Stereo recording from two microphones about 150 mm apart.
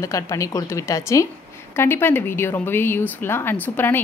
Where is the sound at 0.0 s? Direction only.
20° left (ahead or behind).